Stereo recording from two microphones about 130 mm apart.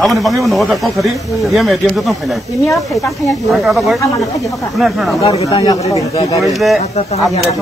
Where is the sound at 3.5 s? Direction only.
Centre (ahead or behind).